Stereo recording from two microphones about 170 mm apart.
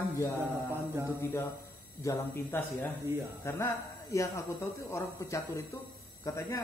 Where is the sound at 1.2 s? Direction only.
15° left (ahead or behind).